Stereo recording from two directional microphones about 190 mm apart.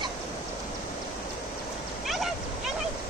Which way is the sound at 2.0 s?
Centre (ahead or behind).